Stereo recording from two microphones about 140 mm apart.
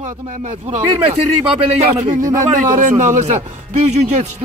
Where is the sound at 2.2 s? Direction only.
25° right (ahead or behind).